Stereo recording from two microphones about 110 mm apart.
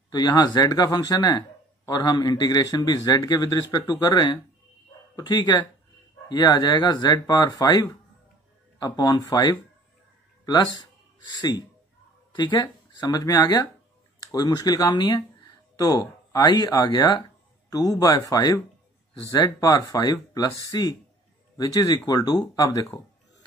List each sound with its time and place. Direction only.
0.1 s a man's voice: 35° left (ahead or behind)